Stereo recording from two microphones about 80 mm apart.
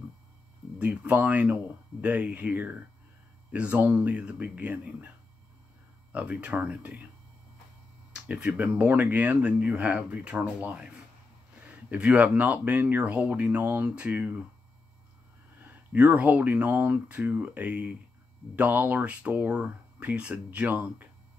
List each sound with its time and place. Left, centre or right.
0.7 s speech: centre
6.1 s speech: centre
8.1 s speech: centre
15.6 s speech: right